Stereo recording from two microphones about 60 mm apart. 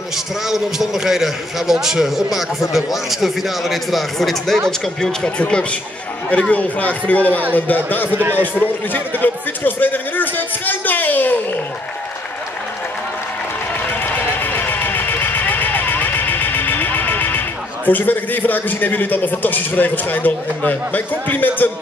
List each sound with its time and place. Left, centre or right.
0.5 s a man's voice: centre; by 8.1 s left
8.1 s a man's voice: right
8.9 s a man's voice: left
13.8 s vehicle: left
17.8 s a man's voice: left